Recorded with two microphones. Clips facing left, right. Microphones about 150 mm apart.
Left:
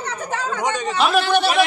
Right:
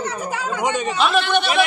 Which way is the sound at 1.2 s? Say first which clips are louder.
Left 2 dB; 35° left (ahead or behind).